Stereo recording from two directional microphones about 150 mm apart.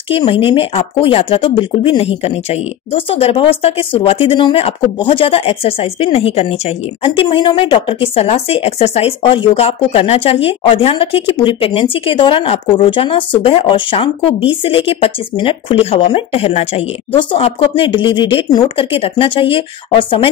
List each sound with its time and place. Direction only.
0.1 s speech: 40° left (ahead or behind)